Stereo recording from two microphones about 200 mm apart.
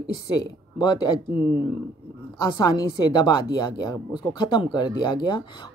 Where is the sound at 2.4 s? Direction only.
20° left (ahead or behind).